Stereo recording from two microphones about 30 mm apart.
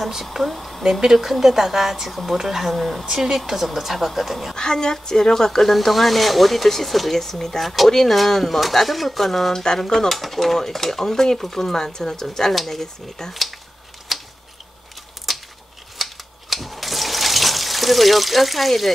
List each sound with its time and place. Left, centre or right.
0.1 s speech: centre
1.0 s speech: centre
2.7 s speech: centre
3.2 s speech: centre
4.6 s a woman's voice: left
7.6 s speech: centre
9.5 s speech: centre
13.3 s speech: centre
14.1 s a sound: centre
15.3 s a sound: centre
16.0 s water: centre